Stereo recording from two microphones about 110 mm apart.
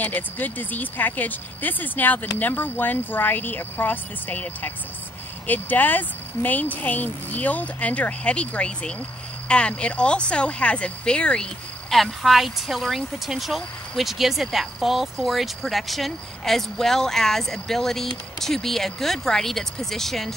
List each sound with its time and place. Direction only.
0.0 s speech: 15° left (ahead or behind)